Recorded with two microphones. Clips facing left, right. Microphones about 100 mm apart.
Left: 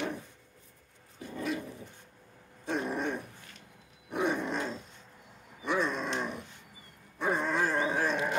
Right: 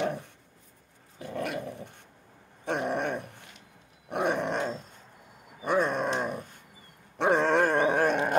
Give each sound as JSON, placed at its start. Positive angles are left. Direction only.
{"t": 1.2, "sound": "dog", "side_deg": -70}
{"t": 2.6, "sound": "dog", "side_deg": -65}
{"t": 4.1, "sound": "roar", "side_deg": -65}
{"t": 5.6, "sound": "a sound", "side_deg": -50}
{"t": 6.1, "sound": "dog", "side_deg": -45}
{"t": 7.2, "sound": "a sound", "side_deg": -85}